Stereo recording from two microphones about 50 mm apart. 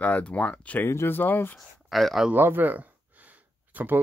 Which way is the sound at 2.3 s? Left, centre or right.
Right.